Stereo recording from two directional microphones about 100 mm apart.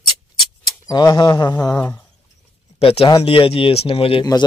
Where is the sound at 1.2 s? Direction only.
45° left (ahead or behind).